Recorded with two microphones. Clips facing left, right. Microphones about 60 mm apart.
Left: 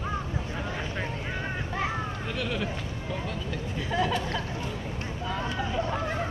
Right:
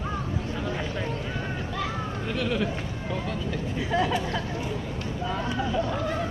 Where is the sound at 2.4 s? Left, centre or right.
Centre.